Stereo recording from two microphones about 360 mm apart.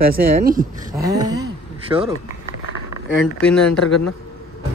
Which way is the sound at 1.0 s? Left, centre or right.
Centre.